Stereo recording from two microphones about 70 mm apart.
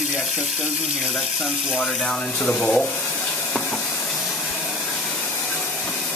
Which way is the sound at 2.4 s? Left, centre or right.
Centre.